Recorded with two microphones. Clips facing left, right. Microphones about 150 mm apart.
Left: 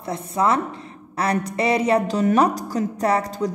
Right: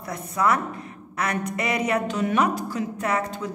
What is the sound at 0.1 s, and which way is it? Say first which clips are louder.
A woman's voice: left 3 dB; 30° left (ahead or behind).